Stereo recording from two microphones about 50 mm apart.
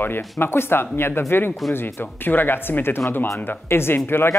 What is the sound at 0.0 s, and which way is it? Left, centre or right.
Speech, left.